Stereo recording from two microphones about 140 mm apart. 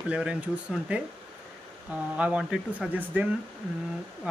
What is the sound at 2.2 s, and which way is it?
Speech, 5° right (ahead or behind).